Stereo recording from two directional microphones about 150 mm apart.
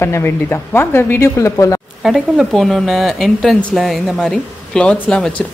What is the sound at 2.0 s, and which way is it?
Speech, centre (ahead or behind).